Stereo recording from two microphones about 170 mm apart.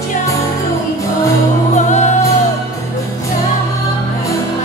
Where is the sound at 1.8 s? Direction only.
45° left (ahead or behind).